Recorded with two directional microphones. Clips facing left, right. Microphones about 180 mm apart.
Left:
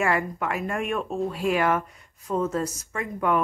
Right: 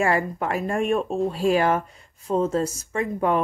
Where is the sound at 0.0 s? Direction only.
30° right (ahead or behind).